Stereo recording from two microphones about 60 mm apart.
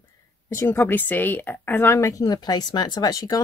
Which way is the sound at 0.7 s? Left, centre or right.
Left.